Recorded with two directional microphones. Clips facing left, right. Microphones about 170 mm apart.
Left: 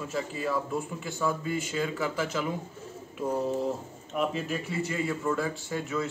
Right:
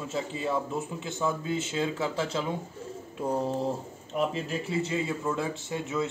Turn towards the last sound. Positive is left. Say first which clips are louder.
# even
turn(degrees=-20)  # may be behind; listen again after turning